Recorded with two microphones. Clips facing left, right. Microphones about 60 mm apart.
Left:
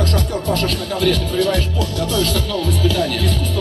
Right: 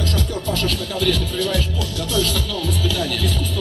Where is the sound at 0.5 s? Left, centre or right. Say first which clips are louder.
Left 4 dB; left.